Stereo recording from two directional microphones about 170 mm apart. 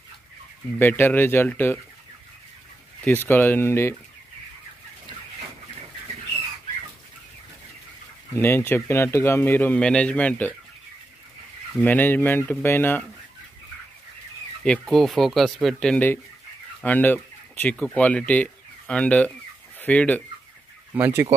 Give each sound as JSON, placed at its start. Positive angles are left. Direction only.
{"t": 0.7, "sound": "a man's voice", "side_deg": 10}
{"t": 3.0, "sound": "a man's voice", "side_deg": 10}
{"t": 8.4, "sound": "a man's voice", "side_deg": 15}
{"t": 11.8, "sound": "a man's voice", "side_deg": 10}
{"t": 14.6, "sound": "speech", "side_deg": 5}
{"t": 20.9, "sound": "chicken", "side_deg": -15}